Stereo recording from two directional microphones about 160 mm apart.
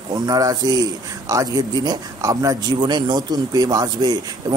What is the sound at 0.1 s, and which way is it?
Speech, 25° right (ahead or behind).